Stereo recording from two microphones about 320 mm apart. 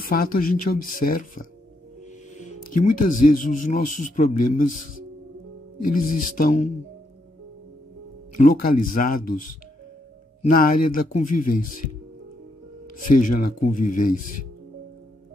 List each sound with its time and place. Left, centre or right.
0.0 s a man's voice: left
2.3 s music: left
3.1 s a man's voice: left
5.9 s a man's voice: left
8.4 s a man's voice: left
13.1 s a man's voice: left